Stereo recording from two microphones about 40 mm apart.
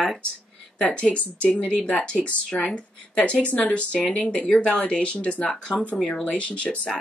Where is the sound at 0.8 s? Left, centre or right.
Left.